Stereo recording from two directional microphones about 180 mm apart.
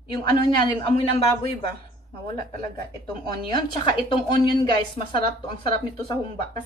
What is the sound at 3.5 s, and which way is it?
Speech, 25° left (ahead or behind).